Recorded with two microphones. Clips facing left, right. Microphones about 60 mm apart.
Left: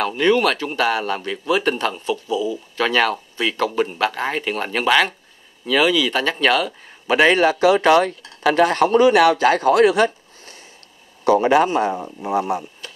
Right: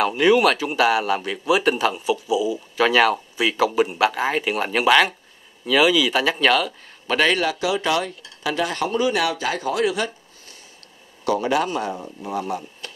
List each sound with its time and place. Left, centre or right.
0.0 s speech: centre
7.1 s speech: centre
7.3 s speech: left